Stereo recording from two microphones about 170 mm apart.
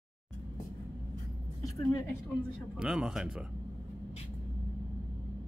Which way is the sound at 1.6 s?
20° left (ahead or behind).